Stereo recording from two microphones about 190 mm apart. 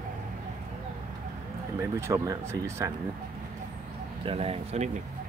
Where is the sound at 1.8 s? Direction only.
15° right (ahead or behind).